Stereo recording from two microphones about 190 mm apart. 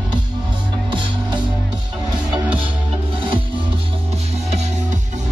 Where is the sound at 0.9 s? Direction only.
25° right (ahead or behind).